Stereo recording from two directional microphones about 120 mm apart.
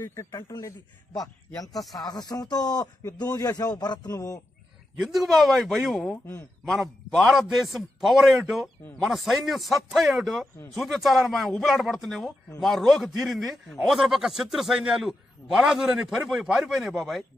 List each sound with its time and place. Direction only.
0.0 s a man's voice: 25° left (ahead or behind)
4.9 s a man's voice: centre (ahead or behind)